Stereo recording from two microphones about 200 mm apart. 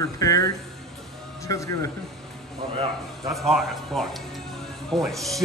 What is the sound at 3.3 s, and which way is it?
Speech, centre (ahead or behind).